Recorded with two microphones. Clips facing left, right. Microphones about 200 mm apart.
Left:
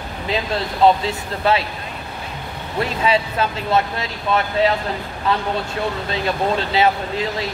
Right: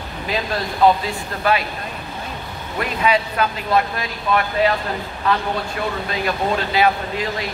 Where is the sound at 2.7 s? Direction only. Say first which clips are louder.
Even; 25° left (ahead or behind).